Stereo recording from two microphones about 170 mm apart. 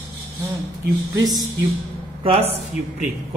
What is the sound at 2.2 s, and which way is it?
Speech, 35° right (ahead or behind).